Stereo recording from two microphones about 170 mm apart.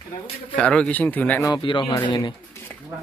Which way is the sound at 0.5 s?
5° left (ahead or behind).